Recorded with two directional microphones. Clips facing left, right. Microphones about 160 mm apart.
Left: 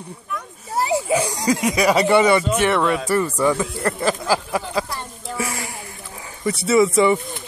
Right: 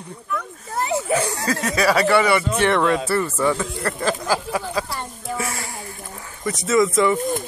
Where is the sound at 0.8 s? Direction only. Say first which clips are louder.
Left 1 dB; 15° left (ahead or behind).